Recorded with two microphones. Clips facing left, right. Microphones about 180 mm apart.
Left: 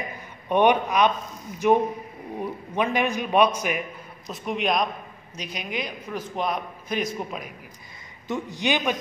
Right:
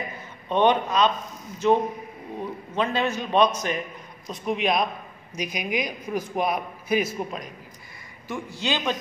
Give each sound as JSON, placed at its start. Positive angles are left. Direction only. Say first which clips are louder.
{"t": 0.5, "sound": "a man's voice", "louder": "left 1 dB", "side_deg": 15}
{"t": 4.3, "sound": "a man's voice", "louder": "right 1 dB", "side_deg": 0}
{"t": 8.3, "sound": "a man's voice", "louder": "left 3 dB", "side_deg": 20}